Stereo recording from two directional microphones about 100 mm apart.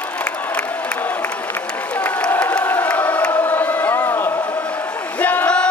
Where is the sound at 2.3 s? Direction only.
20° left (ahead or behind).